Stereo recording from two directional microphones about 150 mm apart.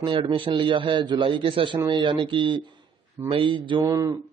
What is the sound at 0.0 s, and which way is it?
A man's voice, 35° right (ahead or behind).